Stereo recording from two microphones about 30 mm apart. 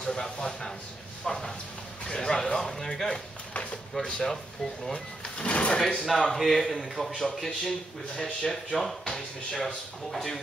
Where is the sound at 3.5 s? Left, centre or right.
Left.